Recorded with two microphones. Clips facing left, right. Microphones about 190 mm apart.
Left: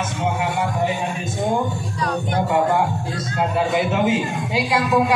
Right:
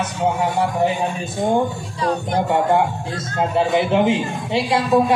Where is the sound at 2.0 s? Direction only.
25° right (ahead or behind).